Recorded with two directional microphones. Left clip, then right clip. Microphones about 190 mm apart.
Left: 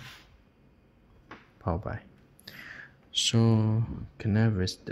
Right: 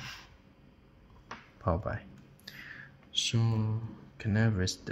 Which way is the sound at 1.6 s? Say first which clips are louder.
Right 1 dB; 10° left (ahead or behind).